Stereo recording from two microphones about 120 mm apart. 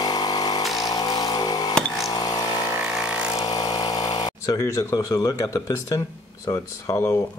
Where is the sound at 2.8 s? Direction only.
5° right (ahead or behind).